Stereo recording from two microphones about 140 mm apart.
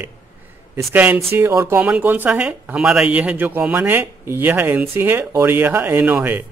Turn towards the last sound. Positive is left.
turn(degrees=-15)  # may be behind; listen again after turning